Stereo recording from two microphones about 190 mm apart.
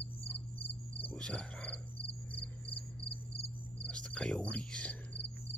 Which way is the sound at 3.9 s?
5° left (ahead or behind).